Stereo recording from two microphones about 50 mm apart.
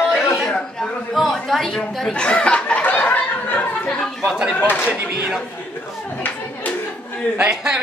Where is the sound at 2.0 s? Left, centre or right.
Centre; by 3.9 s left.